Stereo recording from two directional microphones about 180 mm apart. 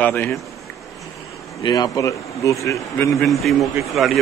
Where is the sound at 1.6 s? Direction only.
20° left (ahead or behind).